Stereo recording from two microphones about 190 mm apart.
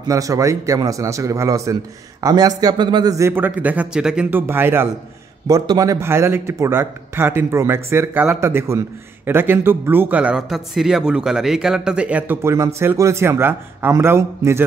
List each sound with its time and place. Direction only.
0.1 s a man's voice: 15° right (ahead or behind)